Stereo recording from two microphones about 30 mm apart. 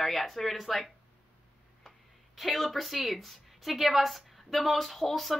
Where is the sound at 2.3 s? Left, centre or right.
Centre.